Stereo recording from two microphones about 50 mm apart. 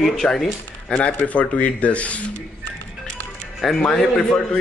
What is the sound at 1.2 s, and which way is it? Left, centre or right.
Speech, left.